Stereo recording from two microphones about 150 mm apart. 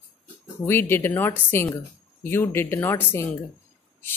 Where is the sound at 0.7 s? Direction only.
15° left (ahead or behind).